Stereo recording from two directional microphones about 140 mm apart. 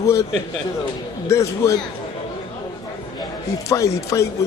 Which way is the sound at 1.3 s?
20° left (ahead or behind).